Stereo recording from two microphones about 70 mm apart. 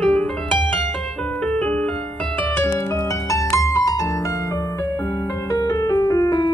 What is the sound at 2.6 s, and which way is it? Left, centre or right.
Music, left.